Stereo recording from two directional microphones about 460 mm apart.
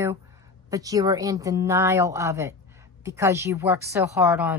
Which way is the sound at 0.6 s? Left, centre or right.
Centre.